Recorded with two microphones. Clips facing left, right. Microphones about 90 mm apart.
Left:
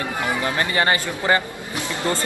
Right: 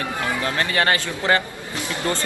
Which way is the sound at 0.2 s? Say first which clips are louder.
Left 2 dB; 20° left (ahead or behind).